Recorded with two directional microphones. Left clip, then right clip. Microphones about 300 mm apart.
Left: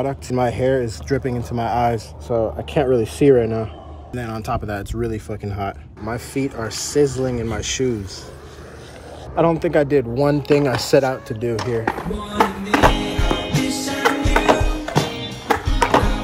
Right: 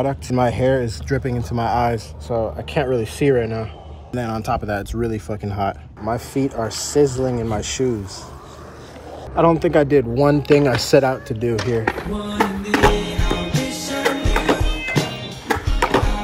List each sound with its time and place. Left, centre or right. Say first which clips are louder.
0.0 s speech: right 1 dB; centre
9.3 s speech: right 2 dB; centre
11.8 s speech: right 1 dB; left
12.4 s music: left 1 dB; centre